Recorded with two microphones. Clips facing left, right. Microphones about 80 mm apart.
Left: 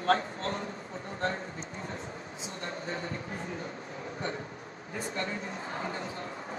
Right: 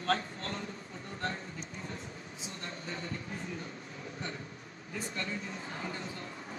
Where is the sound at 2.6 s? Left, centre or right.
Left.